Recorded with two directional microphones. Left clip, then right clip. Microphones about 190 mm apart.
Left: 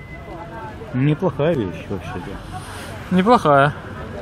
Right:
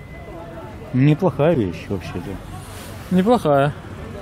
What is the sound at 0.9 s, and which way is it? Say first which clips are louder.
Speech: right 2 dB; 60° right (ahead or behind).